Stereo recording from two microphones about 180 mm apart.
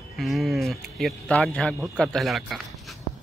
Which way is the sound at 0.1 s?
Centre (ahead or behind).